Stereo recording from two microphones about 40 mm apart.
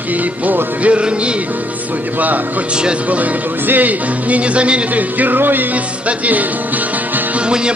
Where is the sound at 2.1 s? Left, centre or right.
Right.